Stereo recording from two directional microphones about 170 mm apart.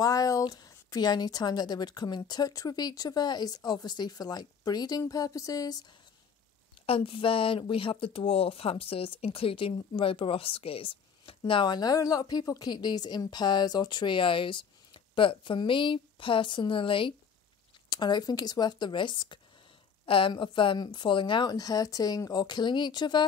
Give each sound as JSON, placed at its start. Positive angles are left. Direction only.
{"t": 0.0, "sound": "speech", "side_deg": 20}
{"t": 6.9, "sound": "speech", "side_deg": 30}